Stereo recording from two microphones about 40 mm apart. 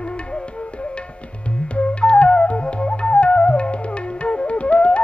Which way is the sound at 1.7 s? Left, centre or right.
Left.